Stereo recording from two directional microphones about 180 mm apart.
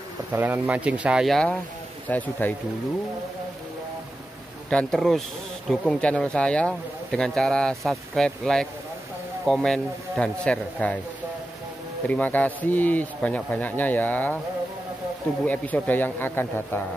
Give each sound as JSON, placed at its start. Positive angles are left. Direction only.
{"t": 0.3, "sound": "speech", "side_deg": -10}
{"t": 4.6, "sound": "speech", "side_deg": 5}
{"t": 12.1, "sound": "speech", "side_deg": 10}
{"t": 15.4, "sound": "speech", "side_deg": 10}